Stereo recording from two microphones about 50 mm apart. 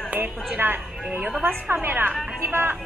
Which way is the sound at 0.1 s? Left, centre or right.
Right.